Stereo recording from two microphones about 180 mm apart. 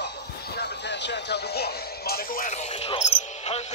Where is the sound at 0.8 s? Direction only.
70° left (ahead or behind); by 2.5 s 55° left (ahead or behind).